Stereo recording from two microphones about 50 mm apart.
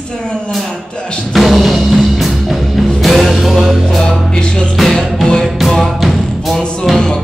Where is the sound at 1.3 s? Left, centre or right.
Centre.